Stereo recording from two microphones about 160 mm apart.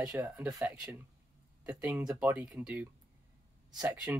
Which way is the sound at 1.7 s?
5° right (ahead or behind).